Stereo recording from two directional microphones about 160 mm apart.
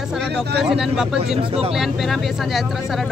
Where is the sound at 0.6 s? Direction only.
5° right (ahead or behind).